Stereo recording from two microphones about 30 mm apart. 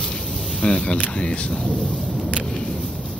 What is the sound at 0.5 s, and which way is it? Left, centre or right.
Speech, left.